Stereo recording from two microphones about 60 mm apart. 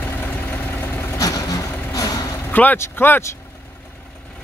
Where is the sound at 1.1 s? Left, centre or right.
Left.